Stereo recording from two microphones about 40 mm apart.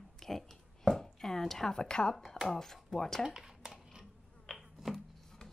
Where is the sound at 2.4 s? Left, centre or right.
Centre.